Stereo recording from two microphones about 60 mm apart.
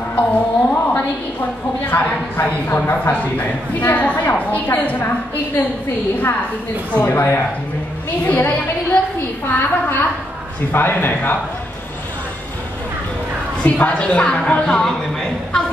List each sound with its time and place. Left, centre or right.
0.1 s a woman's voice: left
7.1 s a woman's voice: left
8.3 s a woman's voice: left
13.7 s a woman's voice: left